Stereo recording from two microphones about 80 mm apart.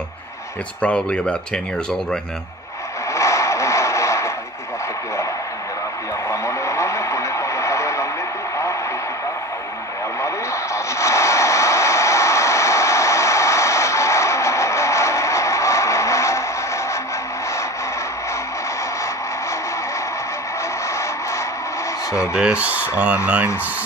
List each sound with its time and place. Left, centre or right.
0.7 s speech: centre
3.1 s scrape: left
6.2 s radio: left
10.2 s vehicle: left
22.3 s speech: centre